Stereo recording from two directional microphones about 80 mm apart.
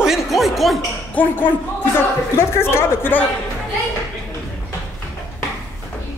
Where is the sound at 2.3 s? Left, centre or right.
Left.